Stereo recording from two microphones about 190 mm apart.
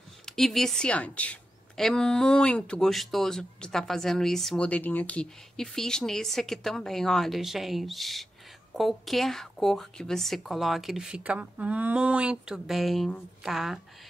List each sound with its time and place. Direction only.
0.2 s a woman's voice: centre (ahead or behind)